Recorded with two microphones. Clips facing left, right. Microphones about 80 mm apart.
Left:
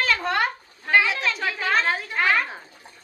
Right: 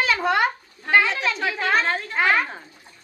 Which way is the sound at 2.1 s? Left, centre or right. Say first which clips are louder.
Right 2 dB; centre.